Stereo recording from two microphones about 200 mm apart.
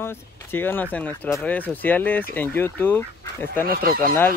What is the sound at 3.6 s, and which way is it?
Speech, 50° right (ahead or behind).